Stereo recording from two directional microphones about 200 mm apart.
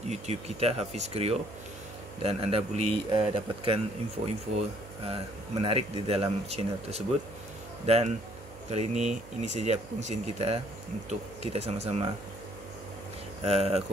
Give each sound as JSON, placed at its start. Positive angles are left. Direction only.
{"t": 0.1, "sound": "speech", "side_deg": -30}
{"t": 13.5, "sound": "speech", "side_deg": -30}